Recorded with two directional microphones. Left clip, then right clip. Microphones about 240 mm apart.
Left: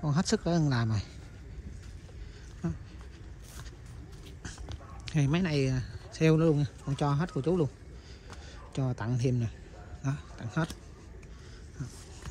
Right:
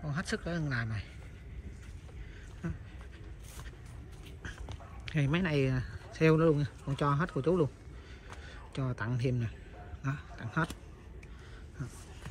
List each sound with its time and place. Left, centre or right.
0.0 s speech: centre
4.6 s speech: centre
8.3 s a sound: centre
10.0 s speech: centre